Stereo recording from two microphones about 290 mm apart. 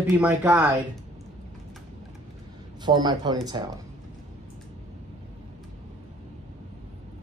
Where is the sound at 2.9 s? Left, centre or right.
Centre.